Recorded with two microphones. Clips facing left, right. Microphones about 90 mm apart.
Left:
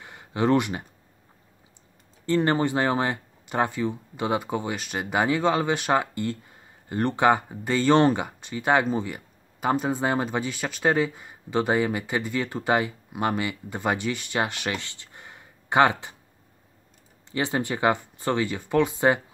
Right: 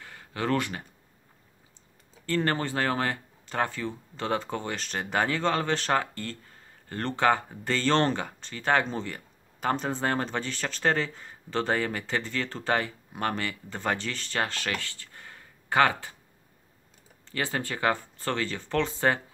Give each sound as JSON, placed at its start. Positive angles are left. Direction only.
{"t": 0.0, "sound": "a sound", "side_deg": 20}
{"t": 2.2, "sound": "speech", "side_deg": 20}
{"t": 17.3, "sound": "speech", "side_deg": 20}